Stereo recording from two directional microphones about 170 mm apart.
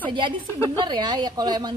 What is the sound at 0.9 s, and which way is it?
Speech, 25° right (ahead or behind).